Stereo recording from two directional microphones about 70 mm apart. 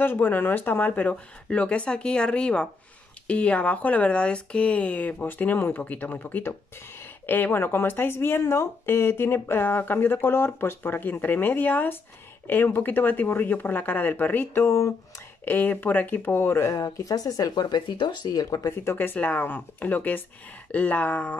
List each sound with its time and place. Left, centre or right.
0.0 s speech: left
15.4 s speech: left
16.7 s speech: left
18.7 s speech: left